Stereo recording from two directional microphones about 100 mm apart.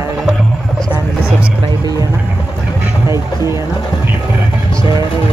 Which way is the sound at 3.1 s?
30° right (ahead or behind).